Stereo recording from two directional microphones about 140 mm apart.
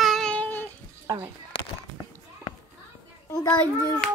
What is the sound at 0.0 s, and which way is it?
Child singing, centre (ahead or behind).